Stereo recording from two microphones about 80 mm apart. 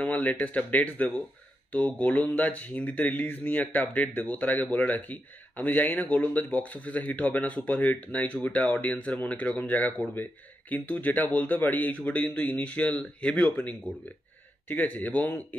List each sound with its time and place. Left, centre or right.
0.0 s speech: centre